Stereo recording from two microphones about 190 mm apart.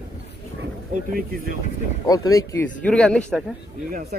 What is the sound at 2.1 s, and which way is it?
Speech, 20° left (ahead or behind).